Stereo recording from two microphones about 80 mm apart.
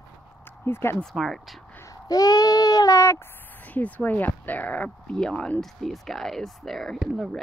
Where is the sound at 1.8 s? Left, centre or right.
Left.